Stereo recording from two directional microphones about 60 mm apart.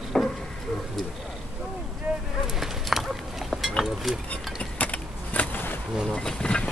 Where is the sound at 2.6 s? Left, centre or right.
Centre.